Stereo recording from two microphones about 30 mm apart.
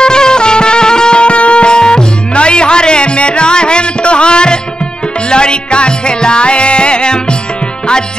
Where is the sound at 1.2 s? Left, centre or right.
Left.